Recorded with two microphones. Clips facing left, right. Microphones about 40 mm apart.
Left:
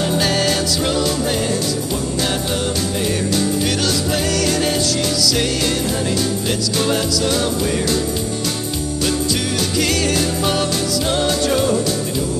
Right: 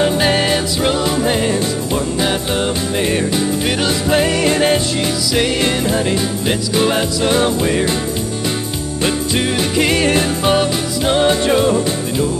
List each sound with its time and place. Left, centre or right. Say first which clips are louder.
0.0 s music: right 3 dB; right
9.0 s music: right 4 dB; right